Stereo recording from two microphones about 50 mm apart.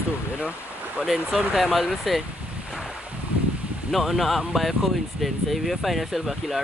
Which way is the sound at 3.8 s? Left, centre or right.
Centre.